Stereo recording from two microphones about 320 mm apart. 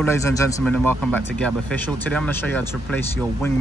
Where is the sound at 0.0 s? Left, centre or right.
Centre.